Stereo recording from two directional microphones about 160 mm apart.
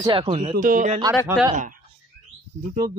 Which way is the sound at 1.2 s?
10° right (ahead or behind).